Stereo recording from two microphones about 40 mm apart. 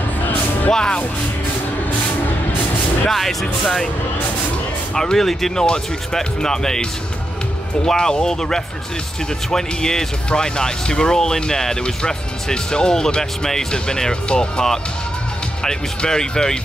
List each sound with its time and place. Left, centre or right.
0.7 s speech: centre
3.1 s speech: centre
3.6 s speech: centre
4.9 s speech: centre